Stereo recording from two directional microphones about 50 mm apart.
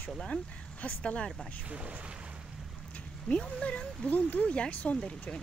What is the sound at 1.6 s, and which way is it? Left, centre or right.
Speech, right.